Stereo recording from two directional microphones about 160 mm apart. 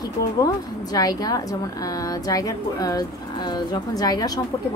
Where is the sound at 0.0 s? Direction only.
25° left (ahead or behind).